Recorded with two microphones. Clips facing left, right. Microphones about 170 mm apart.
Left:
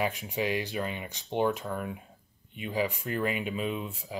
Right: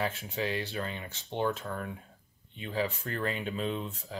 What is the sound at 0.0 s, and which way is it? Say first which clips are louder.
Speech: left 3 dB; 15° left (ahead or behind).